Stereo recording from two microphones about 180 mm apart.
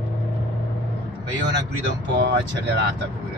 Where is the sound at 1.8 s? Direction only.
75° right (ahead or behind).